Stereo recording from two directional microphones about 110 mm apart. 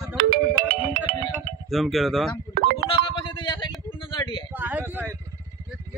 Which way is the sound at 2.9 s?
50° left (ahead or behind).